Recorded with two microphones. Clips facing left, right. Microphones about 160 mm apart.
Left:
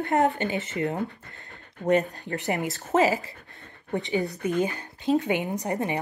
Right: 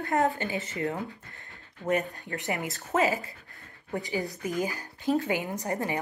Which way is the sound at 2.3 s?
35° left (ahead or behind).